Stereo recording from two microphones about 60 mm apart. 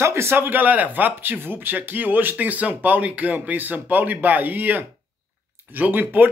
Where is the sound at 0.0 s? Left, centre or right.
Right.